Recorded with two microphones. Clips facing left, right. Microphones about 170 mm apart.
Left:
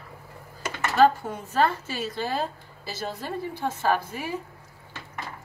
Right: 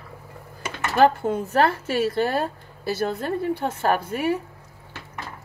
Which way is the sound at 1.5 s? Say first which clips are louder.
Right 2 dB; 65° right (ahead or behind).